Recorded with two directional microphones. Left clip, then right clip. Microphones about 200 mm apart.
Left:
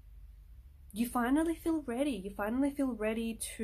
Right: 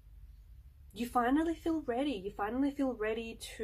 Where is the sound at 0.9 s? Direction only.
50° left (ahead or behind).